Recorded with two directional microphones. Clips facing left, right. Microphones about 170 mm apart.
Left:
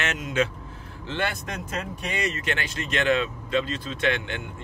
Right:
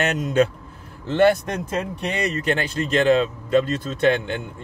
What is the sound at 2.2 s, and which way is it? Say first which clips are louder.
Speech: right 7 dB; 35° right (ahead or behind).